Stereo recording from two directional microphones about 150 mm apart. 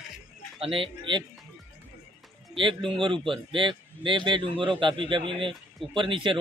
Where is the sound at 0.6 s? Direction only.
40° right (ahead or behind).